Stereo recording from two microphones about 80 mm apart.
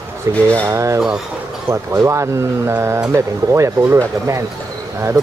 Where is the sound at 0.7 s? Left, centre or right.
Right.